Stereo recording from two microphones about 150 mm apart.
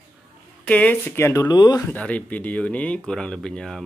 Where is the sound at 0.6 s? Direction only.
10° left (ahead or behind).